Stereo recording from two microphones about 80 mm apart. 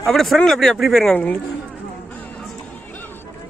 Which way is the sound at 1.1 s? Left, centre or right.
Centre.